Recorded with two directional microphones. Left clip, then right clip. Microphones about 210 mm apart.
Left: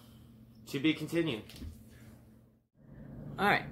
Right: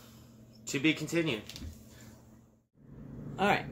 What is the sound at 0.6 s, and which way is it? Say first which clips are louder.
Speech: right 2 dB; 5° right (ahead or behind).